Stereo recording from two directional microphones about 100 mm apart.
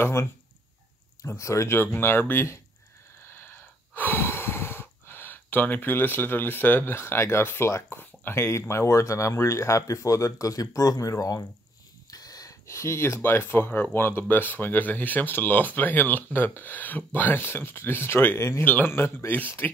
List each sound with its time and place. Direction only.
0.0 s speech: 30° left (ahead or behind)
3.3 s gasp: 20° left (ahead or behind)
12.1 s speech: 40° left (ahead or behind); by 19.7 s 20° left (ahead or behind)